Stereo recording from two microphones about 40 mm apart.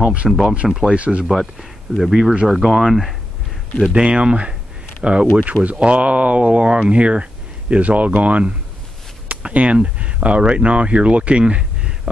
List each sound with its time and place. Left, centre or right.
0.0 s speech: right
0.3 s speech: centre
0.8 s speech: right
1.3 s speech: centre
3.9 s speech: right